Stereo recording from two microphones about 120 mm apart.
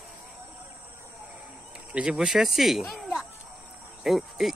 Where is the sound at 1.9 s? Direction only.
5° right (ahead or behind).